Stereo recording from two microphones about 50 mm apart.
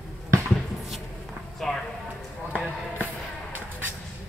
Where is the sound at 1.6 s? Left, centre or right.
Centre.